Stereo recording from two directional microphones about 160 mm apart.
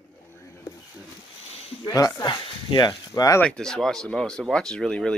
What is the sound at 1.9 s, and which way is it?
Speech, 20° left (ahead or behind).